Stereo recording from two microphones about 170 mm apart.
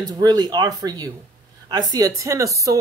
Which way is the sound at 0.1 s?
25° right (ahead or behind).